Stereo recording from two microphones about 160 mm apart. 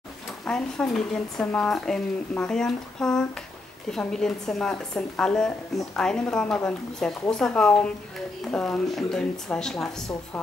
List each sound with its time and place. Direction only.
0.5 s speech: 5° left (ahead or behind)